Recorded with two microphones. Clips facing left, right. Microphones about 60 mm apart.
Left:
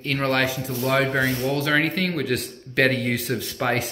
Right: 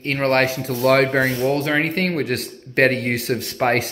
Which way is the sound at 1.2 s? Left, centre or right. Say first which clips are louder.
Right 4 dB; right.